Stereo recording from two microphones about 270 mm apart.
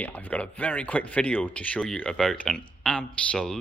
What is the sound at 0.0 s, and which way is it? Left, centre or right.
Speech, centre.